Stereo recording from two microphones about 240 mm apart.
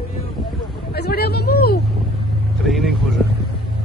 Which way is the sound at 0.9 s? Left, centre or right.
Left.